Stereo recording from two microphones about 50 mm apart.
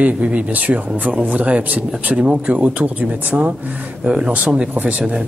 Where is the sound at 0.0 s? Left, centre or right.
Right.